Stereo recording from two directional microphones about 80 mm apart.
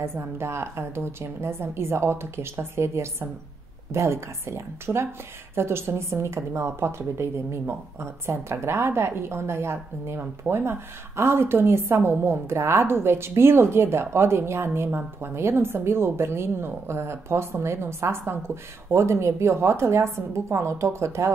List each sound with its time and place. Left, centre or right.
0.0 s a woman's voice: right